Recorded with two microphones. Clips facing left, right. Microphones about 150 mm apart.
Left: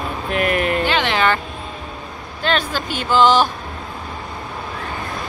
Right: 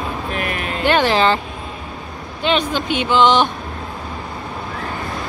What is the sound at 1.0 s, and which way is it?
Speech, 30° right (ahead or behind).